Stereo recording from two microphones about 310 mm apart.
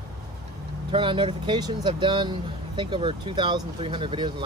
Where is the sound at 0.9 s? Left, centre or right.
Centre.